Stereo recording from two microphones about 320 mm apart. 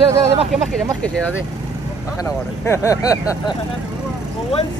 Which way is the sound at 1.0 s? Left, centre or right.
Centre.